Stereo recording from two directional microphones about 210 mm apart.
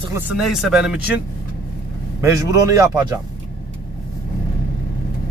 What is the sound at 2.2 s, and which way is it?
Speech, 15° right (ahead or behind).